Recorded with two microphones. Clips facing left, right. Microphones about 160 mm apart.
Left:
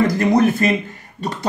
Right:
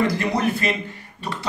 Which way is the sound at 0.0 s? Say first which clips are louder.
Left 6 dB; 45° left (ahead or behind).